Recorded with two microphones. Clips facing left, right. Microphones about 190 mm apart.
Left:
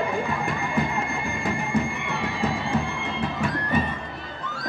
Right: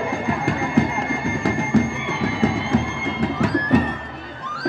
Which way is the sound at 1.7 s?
90° right.